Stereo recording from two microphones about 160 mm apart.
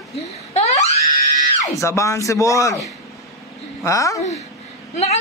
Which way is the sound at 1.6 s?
20° left (ahead or behind).